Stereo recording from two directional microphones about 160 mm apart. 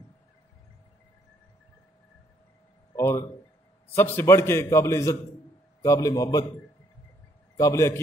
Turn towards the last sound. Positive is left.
turn(degrees=20)  # may be behind; listen again after turning